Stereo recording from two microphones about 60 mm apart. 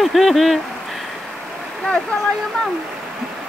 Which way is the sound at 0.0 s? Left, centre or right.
Centre.